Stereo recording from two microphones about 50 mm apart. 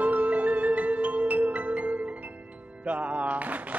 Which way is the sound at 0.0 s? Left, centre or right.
Right.